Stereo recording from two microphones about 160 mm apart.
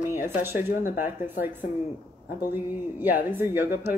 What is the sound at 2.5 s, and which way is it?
Speech, 10° right (ahead or behind).